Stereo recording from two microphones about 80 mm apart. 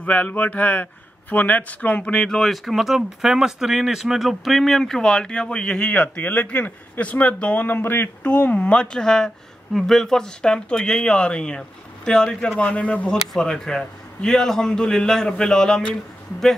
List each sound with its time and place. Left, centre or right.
0.0 s speech: centre